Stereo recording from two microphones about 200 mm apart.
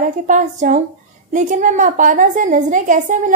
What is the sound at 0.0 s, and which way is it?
A woman's voice, 40° right (ahead or behind).